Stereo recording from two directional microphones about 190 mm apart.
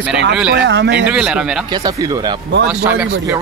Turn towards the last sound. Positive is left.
turn(degrees=-10)  # may be behind; listen again after turning